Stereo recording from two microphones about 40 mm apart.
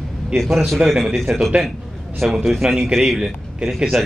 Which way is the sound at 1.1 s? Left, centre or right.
Centre.